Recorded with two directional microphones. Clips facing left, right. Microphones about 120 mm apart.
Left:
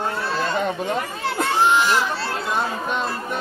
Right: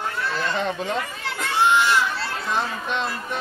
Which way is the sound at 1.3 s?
35° left (ahead or behind).